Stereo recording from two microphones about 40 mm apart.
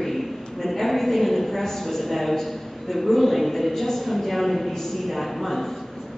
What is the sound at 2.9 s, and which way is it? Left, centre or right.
A woman's voice, centre.